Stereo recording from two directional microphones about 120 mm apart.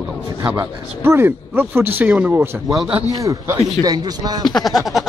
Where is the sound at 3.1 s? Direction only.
25° right (ahead or behind).